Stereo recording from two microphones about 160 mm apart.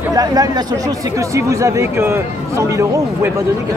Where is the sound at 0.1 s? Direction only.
25° right (ahead or behind).